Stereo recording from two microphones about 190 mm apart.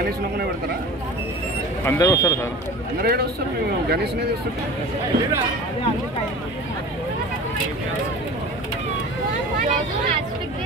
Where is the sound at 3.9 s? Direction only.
60° right (ahead or behind).